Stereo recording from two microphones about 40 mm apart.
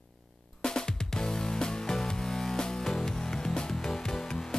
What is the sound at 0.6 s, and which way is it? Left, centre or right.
Music, centre.